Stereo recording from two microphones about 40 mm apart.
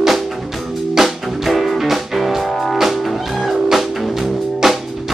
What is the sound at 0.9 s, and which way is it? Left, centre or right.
Music, centre.